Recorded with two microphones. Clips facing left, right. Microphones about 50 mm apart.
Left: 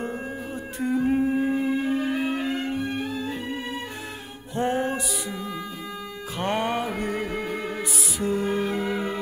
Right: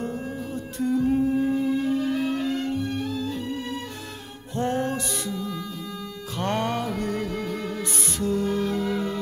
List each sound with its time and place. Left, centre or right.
0.7 s music: left